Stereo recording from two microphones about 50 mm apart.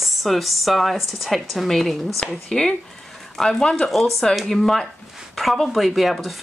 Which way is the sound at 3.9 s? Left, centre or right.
Centre.